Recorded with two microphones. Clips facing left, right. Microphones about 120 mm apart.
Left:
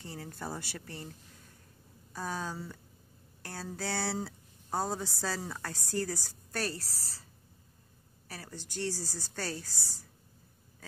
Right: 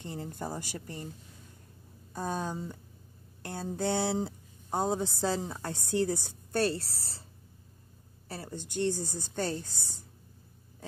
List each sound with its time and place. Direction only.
0.0 s speech: 20° right (ahead or behind)
2.1 s speech: 20° right (ahead or behind)
8.3 s speech: 25° right (ahead or behind)